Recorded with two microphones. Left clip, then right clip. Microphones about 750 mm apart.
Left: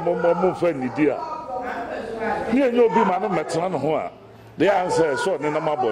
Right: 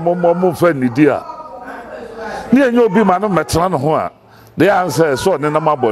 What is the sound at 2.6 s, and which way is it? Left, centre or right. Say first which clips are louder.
A man's voice: right 6 dB; right.